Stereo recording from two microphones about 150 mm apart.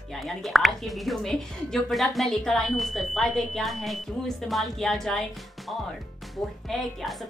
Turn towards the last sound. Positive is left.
turn(degrees=0)  # may be behind; listen again after turning